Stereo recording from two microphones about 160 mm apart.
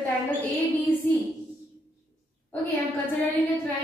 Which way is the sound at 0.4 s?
10° left (ahead or behind).